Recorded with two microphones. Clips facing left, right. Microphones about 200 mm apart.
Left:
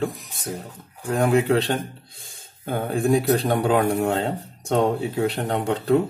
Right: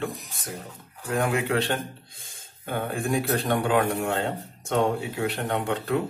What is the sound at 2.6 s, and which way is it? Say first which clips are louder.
Speech: left 6 dB; 35° left (ahead or behind).